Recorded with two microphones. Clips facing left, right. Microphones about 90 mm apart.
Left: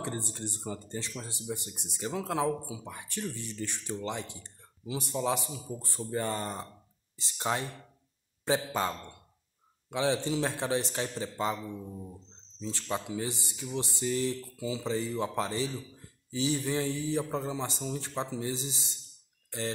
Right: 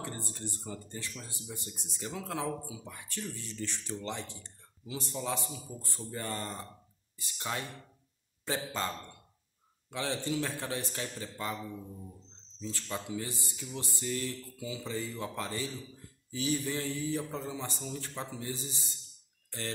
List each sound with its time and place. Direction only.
0.0 s speech: 20° left (ahead or behind)
4.1 s speech: 50° left (ahead or behind)
5.1 s speech: 20° left (ahead or behind)
8.5 s speech: 15° left (ahead or behind)